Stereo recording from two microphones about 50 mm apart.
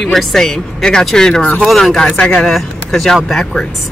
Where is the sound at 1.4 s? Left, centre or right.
Left.